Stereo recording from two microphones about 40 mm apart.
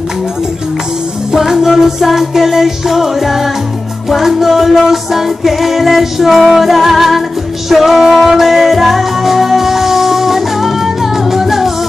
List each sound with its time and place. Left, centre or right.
1.3 s music: centre